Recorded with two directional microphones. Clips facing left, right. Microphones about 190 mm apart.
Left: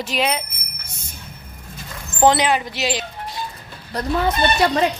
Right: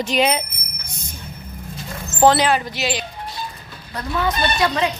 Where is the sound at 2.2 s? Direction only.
20° left (ahead or behind).